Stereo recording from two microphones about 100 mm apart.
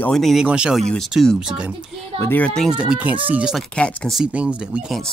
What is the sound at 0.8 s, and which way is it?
Speech, 5° left (ahead or behind).